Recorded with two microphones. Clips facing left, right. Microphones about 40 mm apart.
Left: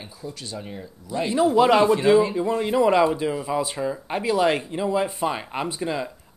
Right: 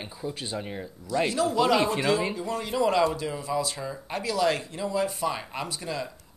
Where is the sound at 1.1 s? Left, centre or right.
Left.